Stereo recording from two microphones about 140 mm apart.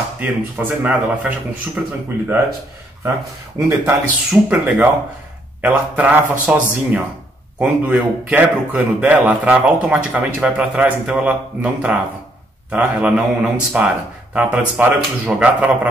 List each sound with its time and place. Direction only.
0.2 s speech: 10° right (ahead or behind)
3.5 s speech: 20° right (ahead or behind)